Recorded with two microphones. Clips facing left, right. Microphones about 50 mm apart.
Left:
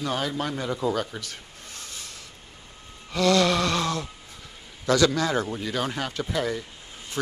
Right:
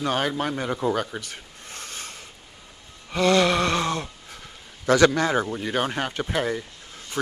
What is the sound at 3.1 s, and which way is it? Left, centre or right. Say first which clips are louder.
Gasp: right 1 dB; right.